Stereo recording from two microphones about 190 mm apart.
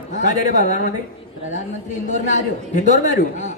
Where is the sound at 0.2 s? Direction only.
40° left (ahead or behind).